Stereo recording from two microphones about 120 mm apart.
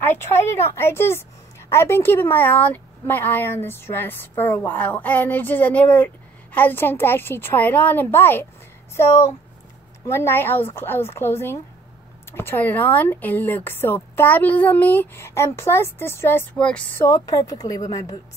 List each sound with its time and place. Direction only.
0.0 s a woman's voice: 20° left (ahead or behind)
16.5 s a woman's voice: 10° left (ahead or behind)
16.9 s a woman's voice: 25° left (ahead or behind)